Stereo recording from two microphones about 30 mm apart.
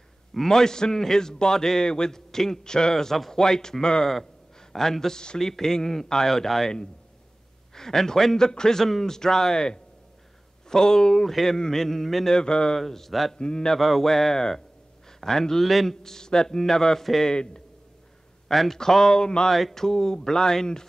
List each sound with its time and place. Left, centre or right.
0.5 s a man's voice: left
4.6 s a sound: centre
5.1 s a man's voice: left
5.4 s speech: centre
7.7 s a man's voice: centre
12.3 s a man's voice: left
12.7 s speech: centre
13.4 s a man's voice: left
13.7 s speech: centre
15.6 s a man's voice: centre
16.0 s a man's voice: centre
18.5 s a man's voice: centre
18.8 s a man's voice: centre